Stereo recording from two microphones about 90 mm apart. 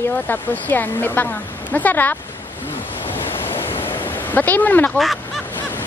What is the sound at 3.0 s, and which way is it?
Waves, 25° left (ahead or behind).